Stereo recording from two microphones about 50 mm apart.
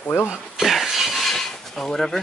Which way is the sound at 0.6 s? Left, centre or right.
Centre.